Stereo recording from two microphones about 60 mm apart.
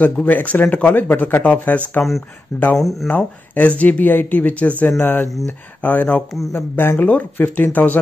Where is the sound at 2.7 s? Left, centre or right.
Centre.